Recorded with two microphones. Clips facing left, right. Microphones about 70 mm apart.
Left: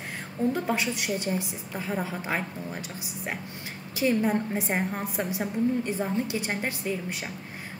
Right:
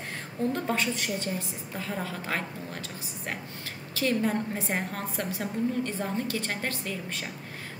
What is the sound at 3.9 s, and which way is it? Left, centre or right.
A woman's voice, centre.